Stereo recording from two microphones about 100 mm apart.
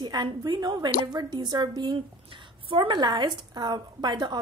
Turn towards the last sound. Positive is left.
turn(degrees=-45)  # may be behind; listen again after turning